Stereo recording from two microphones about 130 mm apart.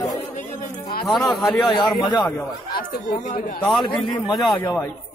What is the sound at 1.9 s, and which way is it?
Speech, 35° left (ahead or behind).